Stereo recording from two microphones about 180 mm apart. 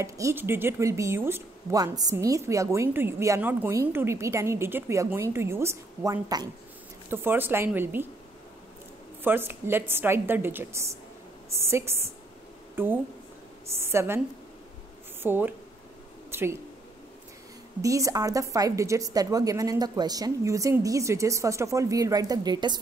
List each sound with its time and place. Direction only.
0.0 s a woman's voice: 15° right (ahead or behind)
9.2 s a woman's voice: 10° right (ahead or behind)
15.2 s a woman's voice: 10° right (ahead or behind)
16.3 s a sound: 15° right (ahead or behind)
17.8 s a woman's voice: 20° right (ahead or behind)